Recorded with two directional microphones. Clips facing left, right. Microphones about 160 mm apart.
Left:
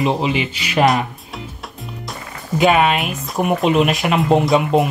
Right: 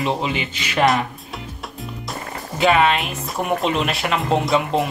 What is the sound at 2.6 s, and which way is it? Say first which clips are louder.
Speech: left 2 dB; 15° left (ahead or behind).